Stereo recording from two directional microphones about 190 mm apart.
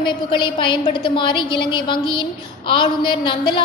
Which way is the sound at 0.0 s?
25° left (ahead or behind).